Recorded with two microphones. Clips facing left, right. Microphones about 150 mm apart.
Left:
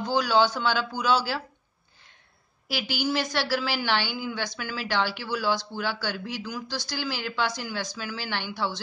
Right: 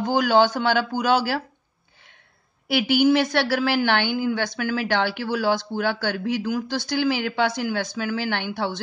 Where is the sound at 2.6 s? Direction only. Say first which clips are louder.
Right 10 dB; 60° right (ahead or behind).